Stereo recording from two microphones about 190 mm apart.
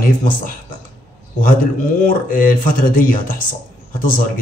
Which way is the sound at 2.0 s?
45° left (ahead or behind).